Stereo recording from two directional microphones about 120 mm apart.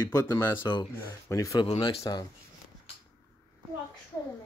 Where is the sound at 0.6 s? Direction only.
40° left (ahead or behind).